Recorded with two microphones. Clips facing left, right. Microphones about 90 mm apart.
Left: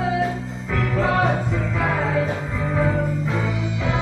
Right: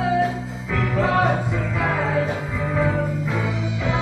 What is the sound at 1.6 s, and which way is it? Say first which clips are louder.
Music: even; 35° left (ahead or behind).